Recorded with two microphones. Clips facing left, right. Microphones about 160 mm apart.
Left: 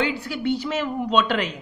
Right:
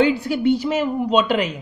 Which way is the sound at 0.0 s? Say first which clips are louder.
Right 7 dB; 15° right (ahead or behind).